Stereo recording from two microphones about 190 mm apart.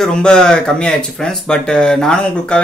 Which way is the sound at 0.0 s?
5° left (ahead or behind).